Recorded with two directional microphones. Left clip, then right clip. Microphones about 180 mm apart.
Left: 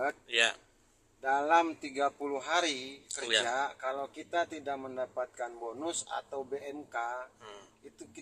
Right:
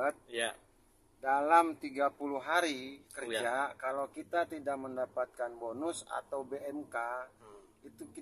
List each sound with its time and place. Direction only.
0.0 s a man's voice: 10° right (ahead or behind)